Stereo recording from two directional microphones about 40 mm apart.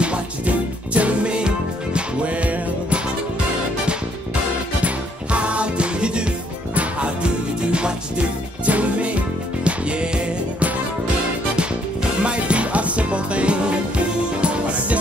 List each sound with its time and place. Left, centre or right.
0.0 s music: right
4.8 s music: right
11.5 s music: right